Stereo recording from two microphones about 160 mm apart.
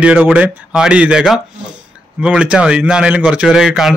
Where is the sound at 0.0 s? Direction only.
10° right (ahead or behind).